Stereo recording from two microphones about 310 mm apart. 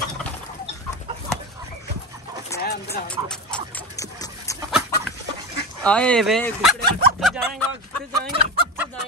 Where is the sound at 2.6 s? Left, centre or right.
Left.